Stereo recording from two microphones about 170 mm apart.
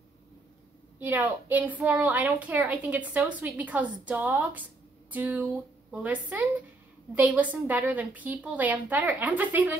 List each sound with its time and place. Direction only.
0.9 s a woman's voice: 10° right (ahead or behind)